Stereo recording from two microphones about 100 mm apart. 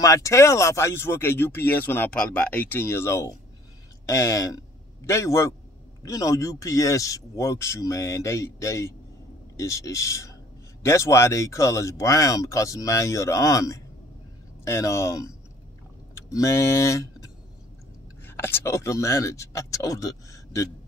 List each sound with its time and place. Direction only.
0.0 s speech: 35° left (ahead or behind)